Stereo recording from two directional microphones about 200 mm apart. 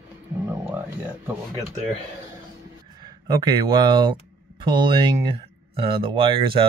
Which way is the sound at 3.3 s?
20° right (ahead or behind).